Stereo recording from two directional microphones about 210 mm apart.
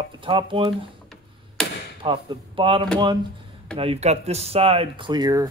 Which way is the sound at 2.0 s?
25° right (ahead or behind).